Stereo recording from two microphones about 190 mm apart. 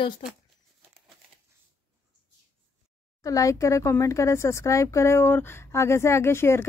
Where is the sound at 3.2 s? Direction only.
15° left (ahead or behind).